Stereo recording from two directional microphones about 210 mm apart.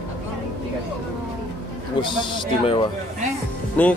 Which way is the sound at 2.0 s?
25° left (ahead or behind).